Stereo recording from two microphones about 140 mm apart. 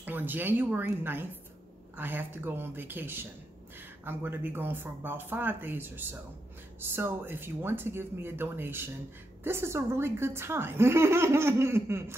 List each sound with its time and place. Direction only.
0.0 s speech: 15° right (ahead or behind)